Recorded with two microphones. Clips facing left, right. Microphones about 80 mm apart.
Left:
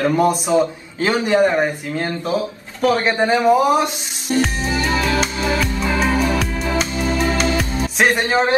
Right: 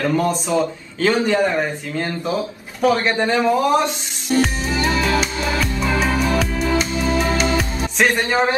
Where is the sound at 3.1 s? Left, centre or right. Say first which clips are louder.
Left 3 dB; left.